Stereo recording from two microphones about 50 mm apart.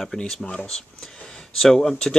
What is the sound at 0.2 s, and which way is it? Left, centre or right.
Speech, centre.